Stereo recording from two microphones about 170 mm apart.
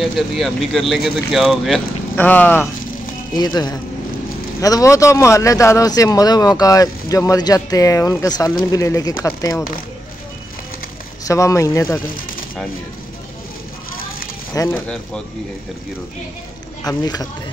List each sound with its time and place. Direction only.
0.0 s speech: centre (ahead or behind)
3.3 s a man's voice: 25° left (ahead or behind)
11.2 s speech: 20° left (ahead or behind)
14.5 s speech: 15° left (ahead or behind)
16.8 s a man's voice: 20° left (ahead or behind)